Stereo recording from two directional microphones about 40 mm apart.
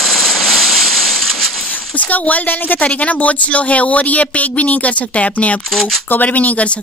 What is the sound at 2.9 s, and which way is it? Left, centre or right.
A woman's voice, left.